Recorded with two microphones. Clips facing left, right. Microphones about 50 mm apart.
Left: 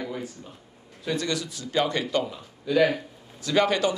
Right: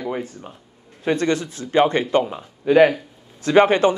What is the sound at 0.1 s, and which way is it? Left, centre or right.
Speech, right.